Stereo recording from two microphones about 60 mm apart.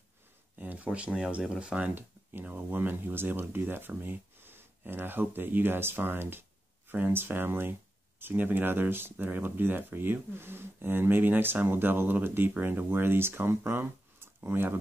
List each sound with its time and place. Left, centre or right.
0.6 s speech: right
2.0 s speech: right